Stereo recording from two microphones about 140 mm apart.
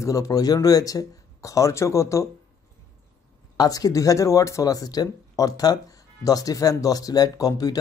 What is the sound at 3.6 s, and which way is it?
Speech, 25° left (ahead or behind).